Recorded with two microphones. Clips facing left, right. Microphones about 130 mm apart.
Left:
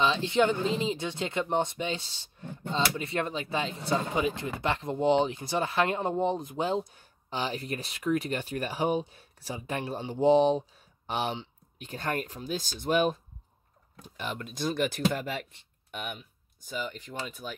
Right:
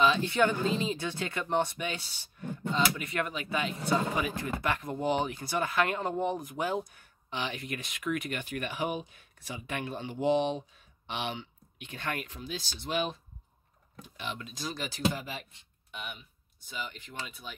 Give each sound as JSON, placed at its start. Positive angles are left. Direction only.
{"t": 0.0, "sound": "speech", "side_deg": 25}